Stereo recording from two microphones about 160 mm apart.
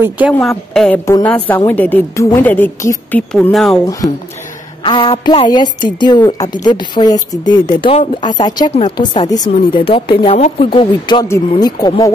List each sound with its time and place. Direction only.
0.3 s a woman's voice: 5° left (ahead or behind)
4.8 s speech: 30° left (ahead or behind)
8.6 s speech: 40° left (ahead or behind)
8.9 s speech: 25° left (ahead or behind)
11.2 s speech: 20° left (ahead or behind)